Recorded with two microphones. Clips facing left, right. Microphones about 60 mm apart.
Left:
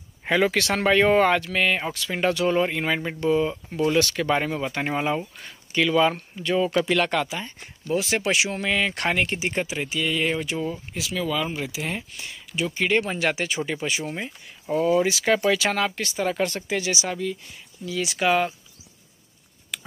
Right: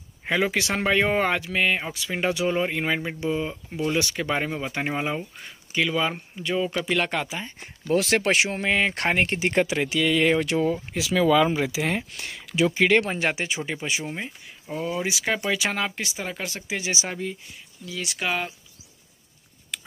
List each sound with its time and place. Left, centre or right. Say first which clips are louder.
0.2 s speech: left 2 dB; centre
7.0 s speech: left 3 dB; centre
7.9 s speech: right 3 dB; right
8.3 s speech: right 1 dB; right
9.4 s speech: right 4 dB; right
12.0 s speech: right 2 dB; right
13.1 s speech: left 1 dB; right
14.7 s speech: left 7 dB; centre
16.8 s speech: left 2 dB; right
17.8 s speech: left 6 dB; centre
19.7 s a sound: left 2 dB; centre